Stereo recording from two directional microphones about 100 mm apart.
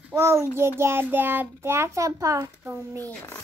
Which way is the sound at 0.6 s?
25° right (ahead or behind).